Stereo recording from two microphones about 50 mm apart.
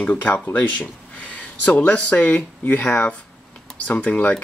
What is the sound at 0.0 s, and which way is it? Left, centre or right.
Speech, left.